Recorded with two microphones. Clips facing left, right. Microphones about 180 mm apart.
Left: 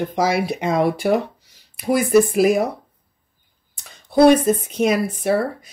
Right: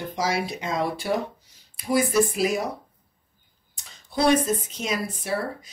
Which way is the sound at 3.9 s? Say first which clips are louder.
Left 9 dB; 60° left (ahead or behind).